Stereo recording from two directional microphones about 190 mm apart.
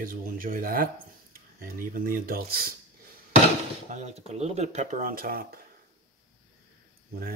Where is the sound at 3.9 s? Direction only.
35° right (ahead or behind).